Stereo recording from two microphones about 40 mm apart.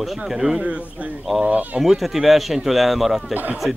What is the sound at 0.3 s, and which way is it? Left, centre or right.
Speech, centre.